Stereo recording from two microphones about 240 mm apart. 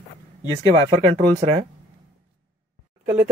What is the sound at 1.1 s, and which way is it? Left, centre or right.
Speech, right.